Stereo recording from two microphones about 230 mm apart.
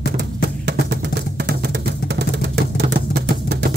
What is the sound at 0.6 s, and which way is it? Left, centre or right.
Music, right.